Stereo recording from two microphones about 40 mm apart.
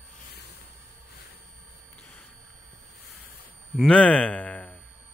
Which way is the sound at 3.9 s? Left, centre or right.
Left.